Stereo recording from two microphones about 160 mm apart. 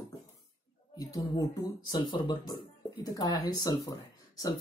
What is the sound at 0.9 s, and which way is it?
Speech, 20° left (ahead or behind).